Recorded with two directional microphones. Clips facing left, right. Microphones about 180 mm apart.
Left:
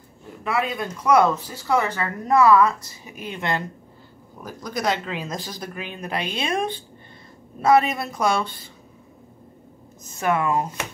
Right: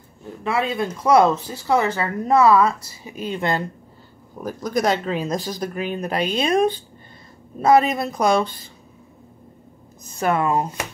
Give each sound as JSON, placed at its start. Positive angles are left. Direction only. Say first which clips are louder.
{"t": 0.4, "sound": "speech", "louder": "right 3 dB", "side_deg": -25}
{"t": 4.5, "sound": "speech", "louder": "right 5 dB", "side_deg": -45}
{"t": 10.1, "sound": "speech", "louder": "right 2 dB", "side_deg": -35}